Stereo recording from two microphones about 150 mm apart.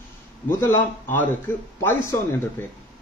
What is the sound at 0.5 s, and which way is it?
A man's voice, 15° left (ahead or behind).